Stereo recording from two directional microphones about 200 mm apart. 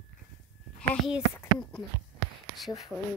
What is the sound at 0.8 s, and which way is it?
Speech, 5° right (ahead or behind).